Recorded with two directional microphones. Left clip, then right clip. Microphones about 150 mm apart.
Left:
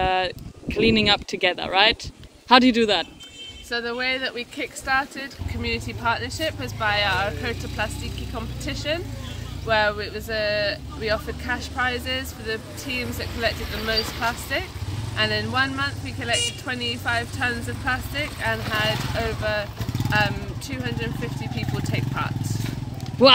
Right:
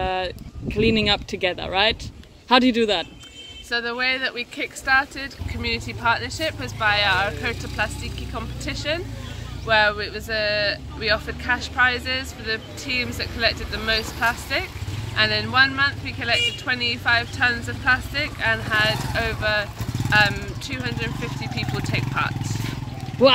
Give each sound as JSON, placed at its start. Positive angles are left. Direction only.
{"t": 0.0, "sound": "a man's voice", "side_deg": 15}
{"t": 3.7, "sound": "speech", "side_deg": 25}
{"t": 23.2, "sound": "speech", "side_deg": 10}